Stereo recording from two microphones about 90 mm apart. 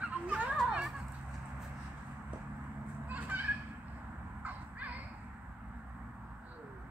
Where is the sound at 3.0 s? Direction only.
20° right (ahead or behind).